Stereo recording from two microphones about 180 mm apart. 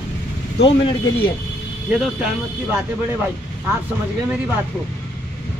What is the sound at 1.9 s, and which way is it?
Speech, 5° right (ahead or behind).